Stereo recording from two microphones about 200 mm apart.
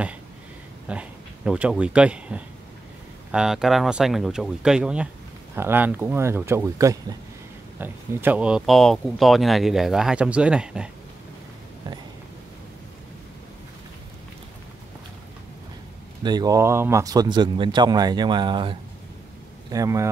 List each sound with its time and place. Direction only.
0.8 s speech: 5° right (ahead or behind)
16.2 s speech: 20° right (ahead or behind)